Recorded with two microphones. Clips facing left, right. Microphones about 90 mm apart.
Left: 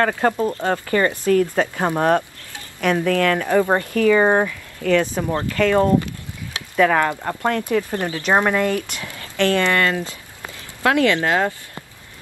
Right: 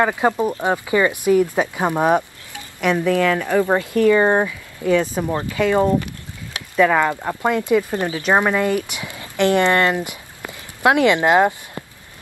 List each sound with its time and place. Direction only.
0.0 s speech: 15° right (ahead or behind)
3.4 s speech: 10° left (ahead or behind)
3.8 s speech: 10° right (ahead or behind)
4.1 s speech: 5° left (ahead or behind)
4.5 s speech: 15° right (ahead or behind)